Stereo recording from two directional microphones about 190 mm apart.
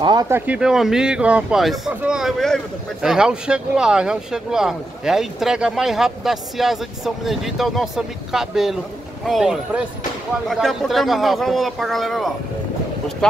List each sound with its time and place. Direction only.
0.0 s speech: 20° right (ahead or behind)
0.5 s speech: 5° right (ahead or behind)